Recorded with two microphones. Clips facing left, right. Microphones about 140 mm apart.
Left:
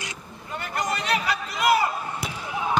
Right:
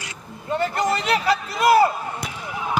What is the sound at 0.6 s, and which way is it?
A man's voice, 30° right (ahead or behind).